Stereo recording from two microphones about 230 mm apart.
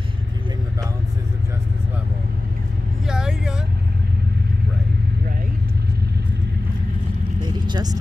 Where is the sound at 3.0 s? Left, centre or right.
Centre.